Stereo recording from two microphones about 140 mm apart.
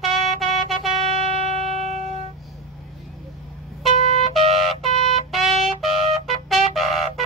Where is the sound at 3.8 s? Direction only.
50° left (ahead or behind).